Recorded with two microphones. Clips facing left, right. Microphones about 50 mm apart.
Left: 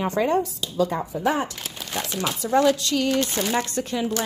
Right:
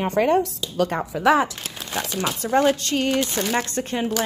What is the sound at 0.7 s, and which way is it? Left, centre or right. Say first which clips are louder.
Speech: right 1 dB; right.